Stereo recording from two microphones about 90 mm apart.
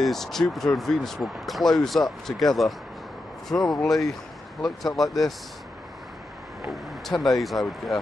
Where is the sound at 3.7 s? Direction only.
5° left (ahead or behind).